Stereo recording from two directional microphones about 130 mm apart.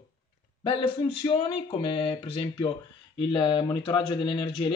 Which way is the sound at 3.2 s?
35° left (ahead or behind).